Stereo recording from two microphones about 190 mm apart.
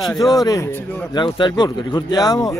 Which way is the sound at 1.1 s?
25° left (ahead or behind).